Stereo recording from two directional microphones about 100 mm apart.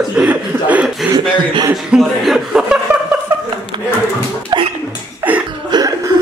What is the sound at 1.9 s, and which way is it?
Speech, centre (ahead or behind).